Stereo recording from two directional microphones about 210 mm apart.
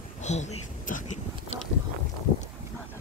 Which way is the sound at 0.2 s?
35° left (ahead or behind).